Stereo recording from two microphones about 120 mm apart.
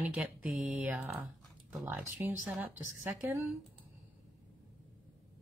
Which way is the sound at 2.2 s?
15° right (ahead or behind).